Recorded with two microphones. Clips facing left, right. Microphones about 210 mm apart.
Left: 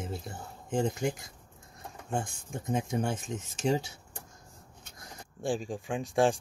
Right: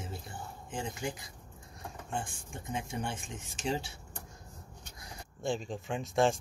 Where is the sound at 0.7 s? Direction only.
45° left (ahead or behind).